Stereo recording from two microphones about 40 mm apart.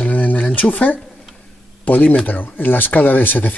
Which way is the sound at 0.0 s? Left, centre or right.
Left.